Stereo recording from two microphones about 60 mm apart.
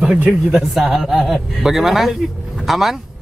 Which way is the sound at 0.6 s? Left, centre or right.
Centre.